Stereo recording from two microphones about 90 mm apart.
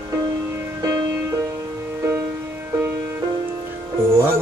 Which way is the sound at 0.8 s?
35° right (ahead or behind).